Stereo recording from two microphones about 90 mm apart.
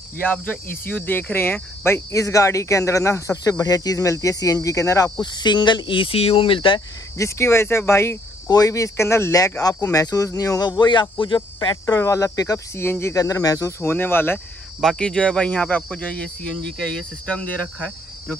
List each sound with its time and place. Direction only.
0.2 s speech: 20° left (ahead or behind); by 5.1 s 35° left (ahead or behind)
5.2 s speech: 55° left (ahead or behind); by 6.8 s 70° left (ahead or behind)
7.2 s speech: 35° left (ahead or behind)
8.5 s speech: 40° left (ahead or behind)
10.8 s speech: 60° left (ahead or behind)
11.7 s speech: 35° left (ahead or behind)
12.8 s speech: 25° left (ahead or behind)
13.1 s speech: 40° left (ahead or behind)
14.8 s speech: 5° left (ahead or behind)